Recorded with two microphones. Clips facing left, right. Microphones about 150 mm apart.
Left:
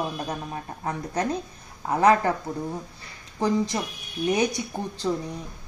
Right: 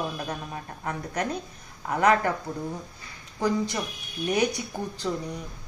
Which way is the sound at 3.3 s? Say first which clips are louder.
Left 2 dB; 30° left (ahead or behind).